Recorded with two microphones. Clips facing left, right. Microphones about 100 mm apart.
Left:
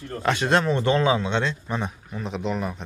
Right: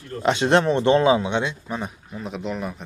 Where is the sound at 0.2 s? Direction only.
20° right (ahead or behind).